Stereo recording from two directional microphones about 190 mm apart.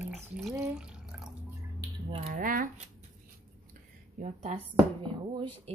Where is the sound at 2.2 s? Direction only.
45° right (ahead or behind).